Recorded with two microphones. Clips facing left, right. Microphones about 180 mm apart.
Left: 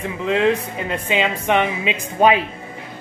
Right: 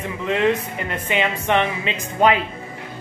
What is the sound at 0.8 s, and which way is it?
Speech, 15° left (ahead or behind).